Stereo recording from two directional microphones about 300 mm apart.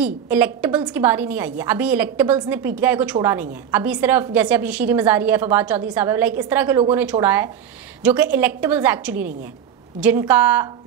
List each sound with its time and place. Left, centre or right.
0.0 s a woman's voice: centre